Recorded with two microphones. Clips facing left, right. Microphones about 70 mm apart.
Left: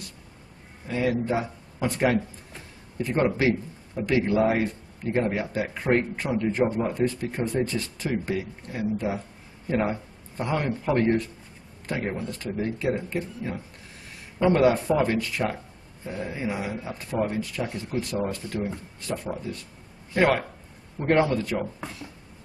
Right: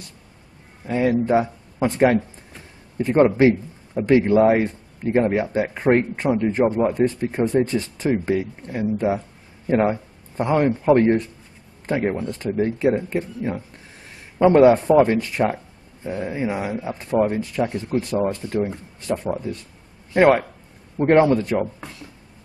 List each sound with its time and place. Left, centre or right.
0.8 s a man's voice: right
14.9 s speech: right